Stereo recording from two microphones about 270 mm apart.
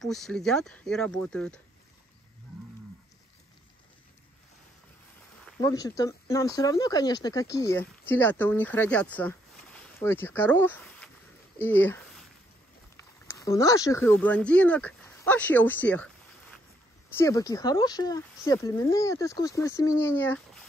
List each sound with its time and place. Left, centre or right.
0.0 s speech: centre
5.6 s speech: centre
11.5 s a sound: centre
12.9 s speech: centre